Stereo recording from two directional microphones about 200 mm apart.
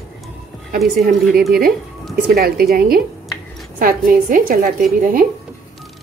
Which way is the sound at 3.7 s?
45° right (ahead or behind).